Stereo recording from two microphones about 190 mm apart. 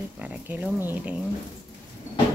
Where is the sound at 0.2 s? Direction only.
10° right (ahead or behind).